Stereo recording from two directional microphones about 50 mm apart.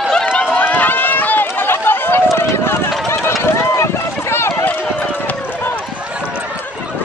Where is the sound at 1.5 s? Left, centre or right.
Left.